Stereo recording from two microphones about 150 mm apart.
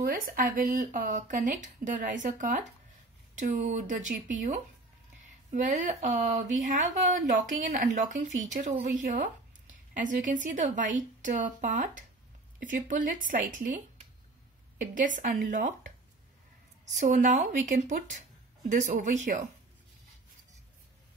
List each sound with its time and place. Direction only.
0.0 s speech: 70° right (ahead or behind)
14.8 s speech: 60° right (ahead or behind)
16.9 s speech: 60° right (ahead or behind)